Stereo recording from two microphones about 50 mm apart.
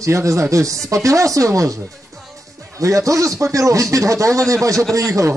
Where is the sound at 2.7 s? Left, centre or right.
Right.